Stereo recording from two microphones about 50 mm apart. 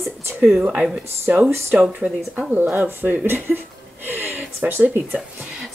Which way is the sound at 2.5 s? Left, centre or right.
Right.